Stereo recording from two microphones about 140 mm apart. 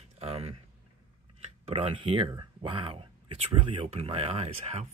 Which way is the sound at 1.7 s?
45° right (ahead or behind).